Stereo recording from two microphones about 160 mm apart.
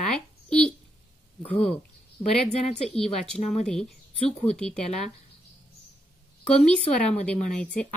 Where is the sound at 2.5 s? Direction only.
40° left (ahead or behind).